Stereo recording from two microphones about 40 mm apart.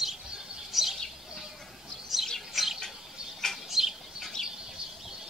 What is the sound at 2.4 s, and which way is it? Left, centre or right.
Bird, centre.